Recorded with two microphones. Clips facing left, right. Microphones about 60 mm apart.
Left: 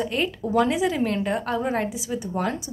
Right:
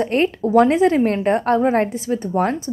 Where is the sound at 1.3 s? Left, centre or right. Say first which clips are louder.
Right 8 dB; right.